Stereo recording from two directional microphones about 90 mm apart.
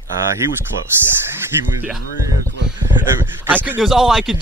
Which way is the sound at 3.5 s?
20° right (ahead or behind).